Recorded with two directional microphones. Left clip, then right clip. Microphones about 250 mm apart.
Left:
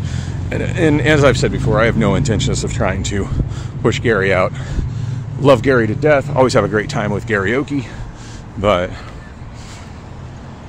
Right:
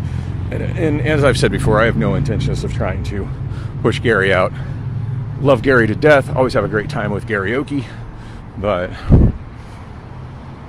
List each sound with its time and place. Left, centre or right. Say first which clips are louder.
0.5 s speech: left 4 dB; centre
1.5 s speech: right 2 dB; centre
1.8 s speech: left 4 dB; centre
3.8 s speech: even; centre
6.3 s speech: left 3 dB; centre